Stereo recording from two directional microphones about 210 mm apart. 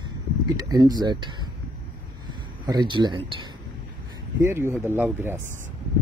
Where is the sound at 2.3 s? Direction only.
20° right (ahead or behind).